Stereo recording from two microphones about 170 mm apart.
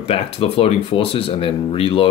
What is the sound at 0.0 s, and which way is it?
Speech, 35° left (ahead or behind).